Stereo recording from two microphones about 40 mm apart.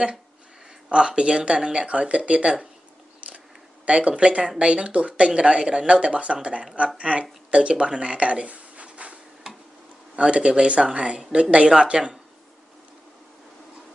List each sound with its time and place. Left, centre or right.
0.8 s speech: right
3.2 s camera: right
3.8 s speech: right
9.5 s tick-tock: centre
10.1 s speech: right